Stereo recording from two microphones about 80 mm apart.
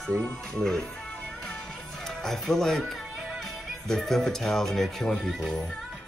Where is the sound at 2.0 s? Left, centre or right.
Centre.